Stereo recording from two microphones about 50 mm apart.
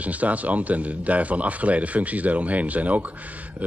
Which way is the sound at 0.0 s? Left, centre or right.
Right.